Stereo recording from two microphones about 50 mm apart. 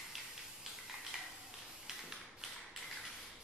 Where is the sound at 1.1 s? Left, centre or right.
Centre.